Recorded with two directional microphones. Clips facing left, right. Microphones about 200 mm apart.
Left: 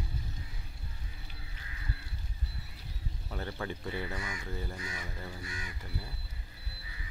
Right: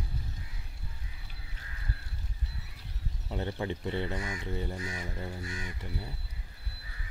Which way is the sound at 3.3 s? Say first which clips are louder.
Right 4 dB; 25° right (ahead or behind).